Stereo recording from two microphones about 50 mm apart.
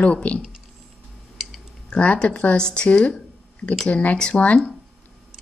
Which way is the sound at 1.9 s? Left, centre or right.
Left.